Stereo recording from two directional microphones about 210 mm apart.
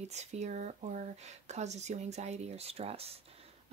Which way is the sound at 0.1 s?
30° right (ahead or behind).